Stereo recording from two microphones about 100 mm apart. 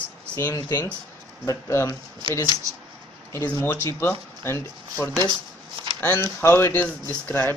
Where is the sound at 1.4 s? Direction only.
30° left (ahead or behind).